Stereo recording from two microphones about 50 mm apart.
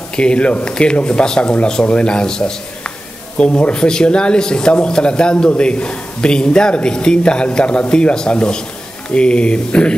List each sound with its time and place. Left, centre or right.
0.1 s speech: centre